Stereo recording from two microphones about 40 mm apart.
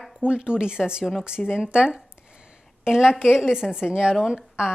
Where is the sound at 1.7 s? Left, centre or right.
Right.